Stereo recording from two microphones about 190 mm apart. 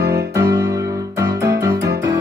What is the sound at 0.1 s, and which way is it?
Music, 15° right (ahead or behind).